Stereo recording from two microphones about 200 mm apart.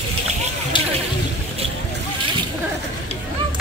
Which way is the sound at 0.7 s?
25° left (ahead or behind).